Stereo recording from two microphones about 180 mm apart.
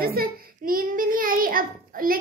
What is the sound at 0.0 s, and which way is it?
Child singing, 55° right (ahead or behind).